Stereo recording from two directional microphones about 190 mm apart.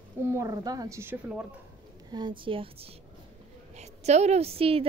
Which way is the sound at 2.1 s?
25° right (ahead or behind).